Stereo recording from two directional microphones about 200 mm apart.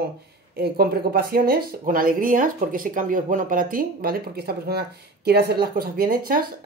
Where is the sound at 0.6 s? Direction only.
50° right (ahead or behind).